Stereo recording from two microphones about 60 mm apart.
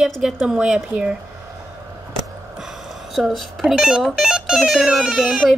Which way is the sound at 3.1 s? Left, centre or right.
Centre.